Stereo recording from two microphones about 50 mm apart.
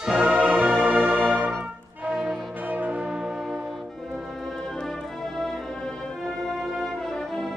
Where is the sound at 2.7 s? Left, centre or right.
Right.